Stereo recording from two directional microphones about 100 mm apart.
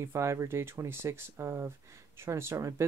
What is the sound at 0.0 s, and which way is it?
Speech, 30° right (ahead or behind).